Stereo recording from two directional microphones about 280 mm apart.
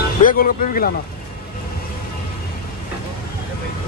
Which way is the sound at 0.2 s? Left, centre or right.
Left.